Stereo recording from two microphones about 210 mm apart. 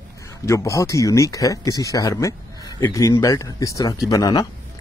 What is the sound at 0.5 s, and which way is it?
Speech, 15° left (ahead or behind).